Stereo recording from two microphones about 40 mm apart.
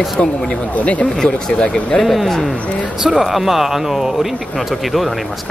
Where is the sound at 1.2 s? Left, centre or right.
Left.